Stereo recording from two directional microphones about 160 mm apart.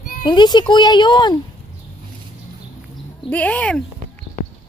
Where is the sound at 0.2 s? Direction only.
25° left (ahead or behind).